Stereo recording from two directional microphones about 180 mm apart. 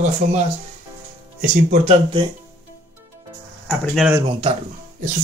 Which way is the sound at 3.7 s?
Centre (ahead or behind).